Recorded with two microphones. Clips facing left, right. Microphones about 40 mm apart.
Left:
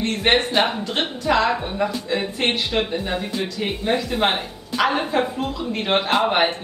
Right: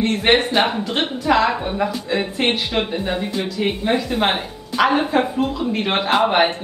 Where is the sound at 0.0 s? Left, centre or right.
Centre.